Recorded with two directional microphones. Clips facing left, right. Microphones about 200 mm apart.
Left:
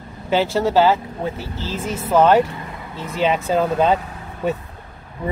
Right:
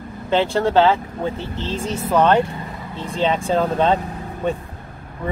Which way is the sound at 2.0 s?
10° left (ahead or behind).